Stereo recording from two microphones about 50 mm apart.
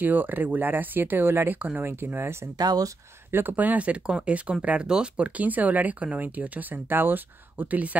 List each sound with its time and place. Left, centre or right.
0.0 s speech: right
1.9 s speech: right
3.5 s speech: right
6.9 s speech: right